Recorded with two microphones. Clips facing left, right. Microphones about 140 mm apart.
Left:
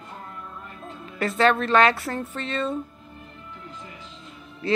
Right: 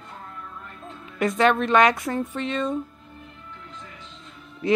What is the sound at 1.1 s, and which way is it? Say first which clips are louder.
Speech: right 1 dB; 15° right (ahead or behind).